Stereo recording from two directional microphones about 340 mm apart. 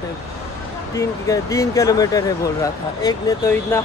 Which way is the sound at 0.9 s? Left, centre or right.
Centre.